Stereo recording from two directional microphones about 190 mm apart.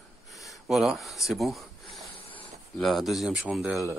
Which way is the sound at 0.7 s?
Centre (ahead or behind).